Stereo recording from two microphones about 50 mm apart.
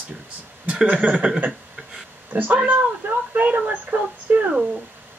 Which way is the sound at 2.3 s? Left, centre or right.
Right.